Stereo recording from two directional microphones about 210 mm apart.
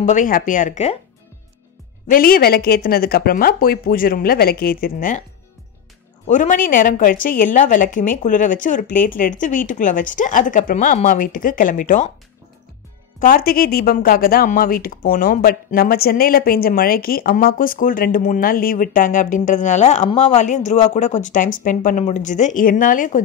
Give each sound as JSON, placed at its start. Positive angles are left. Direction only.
{"t": 0.1, "sound": "a woman's voice", "side_deg": 40}
{"t": 2.0, "sound": "a woman's voice", "side_deg": 45}
{"t": 6.2, "sound": "a woman's voice", "side_deg": 35}
{"t": 13.2, "sound": "a woman's voice", "side_deg": 45}